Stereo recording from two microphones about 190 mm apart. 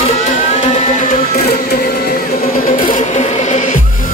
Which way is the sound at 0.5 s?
40° left (ahead or behind).